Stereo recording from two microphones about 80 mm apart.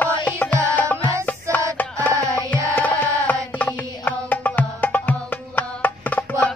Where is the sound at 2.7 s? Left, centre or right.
Centre.